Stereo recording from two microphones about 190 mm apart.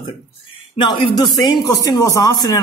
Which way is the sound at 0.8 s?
25° left (ahead or behind).